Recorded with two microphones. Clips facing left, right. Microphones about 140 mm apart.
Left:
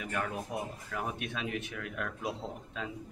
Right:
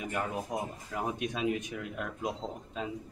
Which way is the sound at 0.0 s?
20° right (ahead or behind).